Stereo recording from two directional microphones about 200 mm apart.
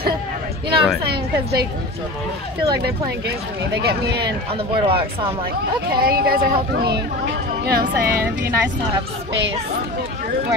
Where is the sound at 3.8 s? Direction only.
55° right (ahead or behind).